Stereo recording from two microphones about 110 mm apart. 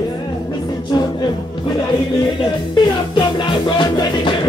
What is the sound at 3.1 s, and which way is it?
Music, 45° left (ahead or behind).